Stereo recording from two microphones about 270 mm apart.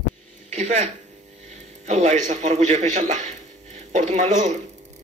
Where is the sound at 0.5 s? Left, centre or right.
Right.